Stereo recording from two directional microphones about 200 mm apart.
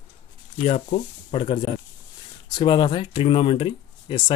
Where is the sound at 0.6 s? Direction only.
35° left (ahead or behind).